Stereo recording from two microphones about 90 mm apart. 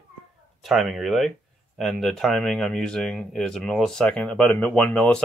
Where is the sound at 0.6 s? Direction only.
Centre (ahead or behind).